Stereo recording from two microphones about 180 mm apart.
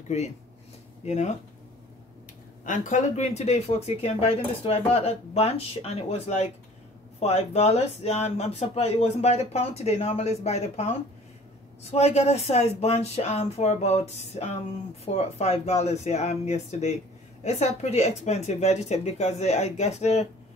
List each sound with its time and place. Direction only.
0.1 s speech: 40° left (ahead or behind)
2.6 s speech: 45° left (ahead or behind)